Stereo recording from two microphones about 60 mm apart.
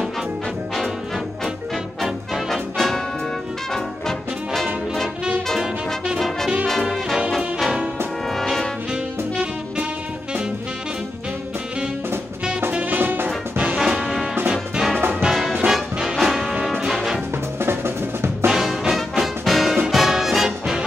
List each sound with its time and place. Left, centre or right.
2.0 s music: centre
6.1 s brass instrument: centre
7.3 s music: centre
8.3 s brass instrument: centre
8.9 s music: centre
12.9 s music: right
13.7 s music: centre
15.0 s music: right
15.3 s music: centre
16.2 s brass instrument: centre
17.6 s drum: right
18.5 s music: centre